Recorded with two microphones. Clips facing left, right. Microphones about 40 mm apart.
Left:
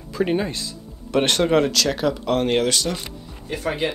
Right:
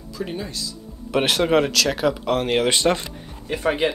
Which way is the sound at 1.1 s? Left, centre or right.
Centre.